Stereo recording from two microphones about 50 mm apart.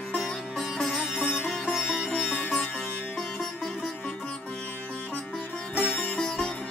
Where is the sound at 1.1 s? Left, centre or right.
Left.